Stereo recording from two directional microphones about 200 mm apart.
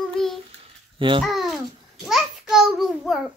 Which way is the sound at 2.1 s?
Centre (ahead or behind).